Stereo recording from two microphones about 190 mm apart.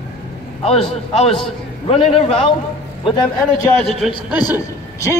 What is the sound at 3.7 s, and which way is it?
Speech, 5° left (ahead or behind).